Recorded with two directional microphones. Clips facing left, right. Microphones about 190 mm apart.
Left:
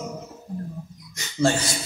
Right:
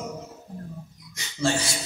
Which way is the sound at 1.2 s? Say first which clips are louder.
Left 4 dB; 45° left (ahead or behind).